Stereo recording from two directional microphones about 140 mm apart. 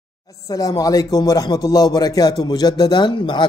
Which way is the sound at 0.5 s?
25° left (ahead or behind).